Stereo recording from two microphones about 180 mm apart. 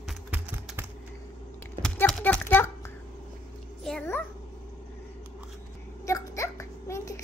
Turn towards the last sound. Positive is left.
turn(degrees=15)  # may be behind; listen again after turning